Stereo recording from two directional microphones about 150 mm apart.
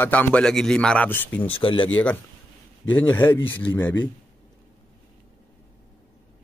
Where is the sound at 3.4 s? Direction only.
30° left (ahead or behind).